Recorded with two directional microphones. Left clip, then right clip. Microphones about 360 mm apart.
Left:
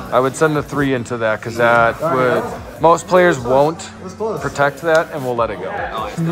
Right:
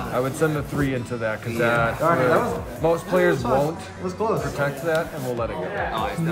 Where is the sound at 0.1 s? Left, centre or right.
Centre.